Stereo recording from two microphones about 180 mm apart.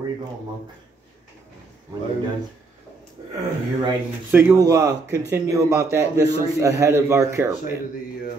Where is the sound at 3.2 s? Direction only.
25° right (ahead or behind).